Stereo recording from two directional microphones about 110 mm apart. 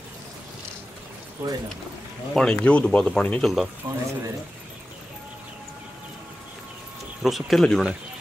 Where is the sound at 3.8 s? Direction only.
30° right (ahead or behind).